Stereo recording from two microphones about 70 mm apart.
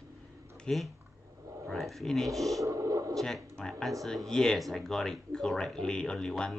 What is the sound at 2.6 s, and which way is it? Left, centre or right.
Radio, right.